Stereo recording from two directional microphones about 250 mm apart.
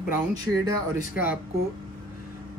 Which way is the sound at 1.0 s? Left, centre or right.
Left.